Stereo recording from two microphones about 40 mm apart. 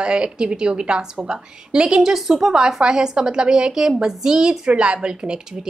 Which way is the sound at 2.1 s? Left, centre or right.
Centre.